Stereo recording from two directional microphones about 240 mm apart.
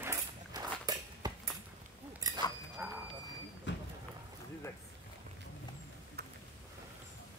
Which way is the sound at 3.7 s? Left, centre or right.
Left.